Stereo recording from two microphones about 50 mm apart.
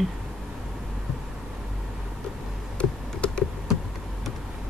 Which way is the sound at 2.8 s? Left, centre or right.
Left.